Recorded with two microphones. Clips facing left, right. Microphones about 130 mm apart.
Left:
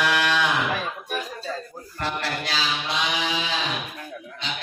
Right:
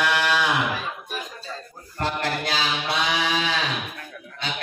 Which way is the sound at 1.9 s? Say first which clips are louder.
Right 2 dB; 50° right (ahead or behind).